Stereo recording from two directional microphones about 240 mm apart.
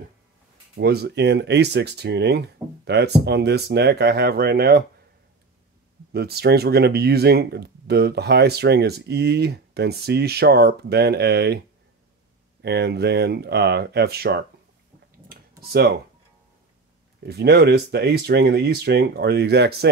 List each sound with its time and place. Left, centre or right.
0.7 s speech: right
6.1 s speech: right
12.6 s speech: right
15.6 s speech: right
17.2 s speech: right